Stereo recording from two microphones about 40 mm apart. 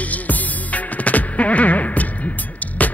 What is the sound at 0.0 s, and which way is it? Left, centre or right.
Music, left.